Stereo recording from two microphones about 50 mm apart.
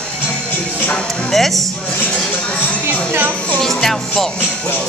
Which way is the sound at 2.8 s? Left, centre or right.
Right.